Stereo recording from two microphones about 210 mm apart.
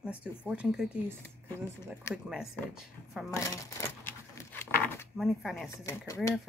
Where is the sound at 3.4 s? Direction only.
15° left (ahead or behind).